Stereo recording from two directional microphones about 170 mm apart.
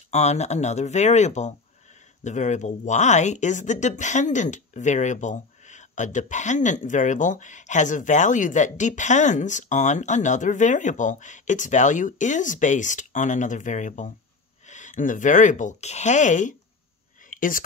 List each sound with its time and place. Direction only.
0.1 s speech: 40° left (ahead or behind)
17.3 s whispering: 50° left (ahead or behind)